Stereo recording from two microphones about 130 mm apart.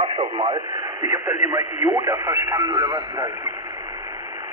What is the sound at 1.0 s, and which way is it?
Speech, 20° right (ahead or behind).